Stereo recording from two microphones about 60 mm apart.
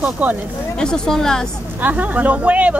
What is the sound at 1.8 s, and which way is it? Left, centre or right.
Speech, right.